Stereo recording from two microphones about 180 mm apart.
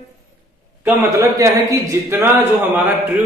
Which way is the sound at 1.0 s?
15° right (ahead or behind).